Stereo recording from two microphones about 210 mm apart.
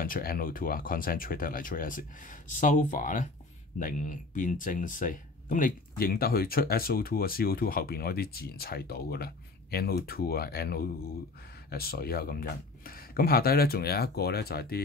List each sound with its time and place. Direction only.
0.0 s speech: 45° left (ahead or behind)